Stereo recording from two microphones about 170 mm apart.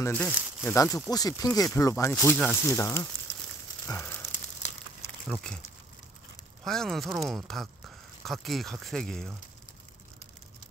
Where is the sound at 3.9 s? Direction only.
15° left (ahead or behind).